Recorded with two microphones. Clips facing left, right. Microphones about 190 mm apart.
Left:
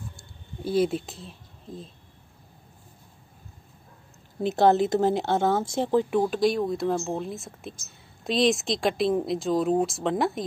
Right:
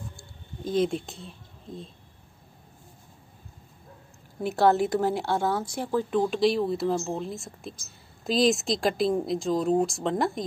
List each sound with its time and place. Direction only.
0.7 s speech: 5° left (ahead or behind)
4.4 s speech: 20° left (ahead or behind)
6.0 s speech: 10° left (ahead or behind)